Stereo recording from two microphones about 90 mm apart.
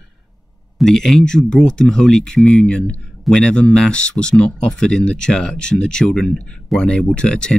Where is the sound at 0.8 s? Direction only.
5° left (ahead or behind).